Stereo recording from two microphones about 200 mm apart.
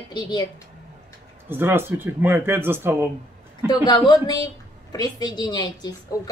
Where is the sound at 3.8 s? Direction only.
20° left (ahead or behind).